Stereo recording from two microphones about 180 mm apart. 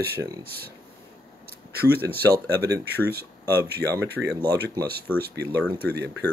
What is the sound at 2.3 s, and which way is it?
Speech, 20° right (ahead or behind).